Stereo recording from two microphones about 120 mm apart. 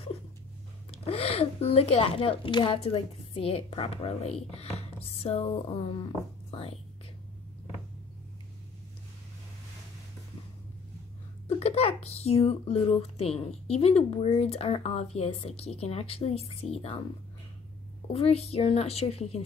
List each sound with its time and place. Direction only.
0.9 s a woman's voice: 55° left (ahead or behind)
11.4 s speech: 60° left (ahead or behind)
18.1 s speech: 55° left (ahead or behind)